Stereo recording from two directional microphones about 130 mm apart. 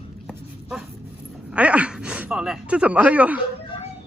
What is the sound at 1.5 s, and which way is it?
Speech, 10° right (ahead or behind).